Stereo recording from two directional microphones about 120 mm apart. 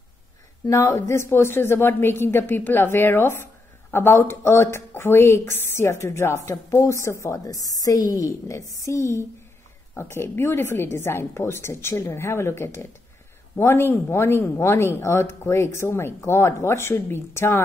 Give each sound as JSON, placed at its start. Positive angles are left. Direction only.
{"t": 0.7, "sound": "speech", "side_deg": 25}